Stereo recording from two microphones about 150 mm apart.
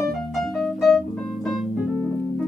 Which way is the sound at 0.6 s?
Centre (ahead or behind).